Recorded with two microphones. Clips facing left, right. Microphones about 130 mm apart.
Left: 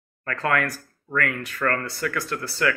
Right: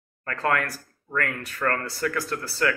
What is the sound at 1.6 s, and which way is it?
Speech, 15° right (ahead or behind).